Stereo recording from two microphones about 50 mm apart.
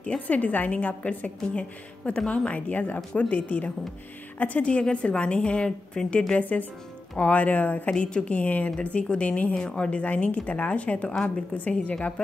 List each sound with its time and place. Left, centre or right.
0.0 s a woman's voice: left
11.7 s a woman's voice: centre